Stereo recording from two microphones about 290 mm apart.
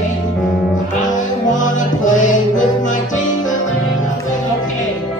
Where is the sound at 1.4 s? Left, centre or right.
Left.